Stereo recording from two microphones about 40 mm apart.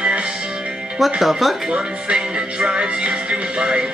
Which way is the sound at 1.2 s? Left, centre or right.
Centre.